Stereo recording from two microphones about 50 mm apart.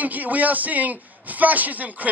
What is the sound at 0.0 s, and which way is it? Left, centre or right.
A man's voice, right.